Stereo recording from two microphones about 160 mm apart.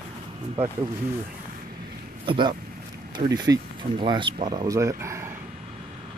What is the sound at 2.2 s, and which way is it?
Speech, 30° right (ahead or behind).